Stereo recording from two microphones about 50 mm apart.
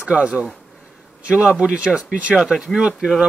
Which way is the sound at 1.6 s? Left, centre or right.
Right.